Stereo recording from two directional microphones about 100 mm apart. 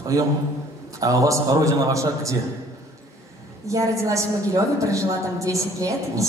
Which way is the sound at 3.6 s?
30° right (ahead or behind).